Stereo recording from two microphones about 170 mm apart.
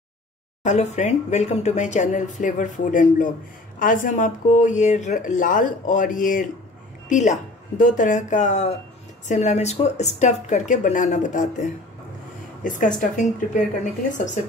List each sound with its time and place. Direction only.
0.7 s speech: 45° left (ahead or behind)